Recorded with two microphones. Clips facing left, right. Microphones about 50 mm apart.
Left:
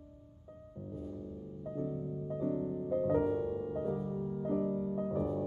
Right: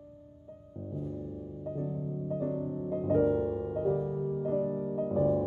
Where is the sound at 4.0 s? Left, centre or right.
Right.